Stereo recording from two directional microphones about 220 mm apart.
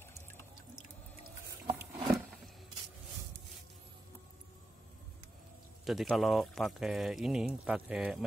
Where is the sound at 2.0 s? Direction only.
Centre (ahead or behind).